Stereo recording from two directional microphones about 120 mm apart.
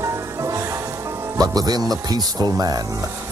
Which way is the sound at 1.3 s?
30° right (ahead or behind).